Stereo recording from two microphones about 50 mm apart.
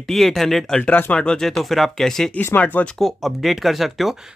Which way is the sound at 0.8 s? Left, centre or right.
Left.